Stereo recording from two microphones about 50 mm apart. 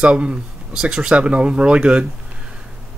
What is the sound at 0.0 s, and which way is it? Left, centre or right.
Speech, right.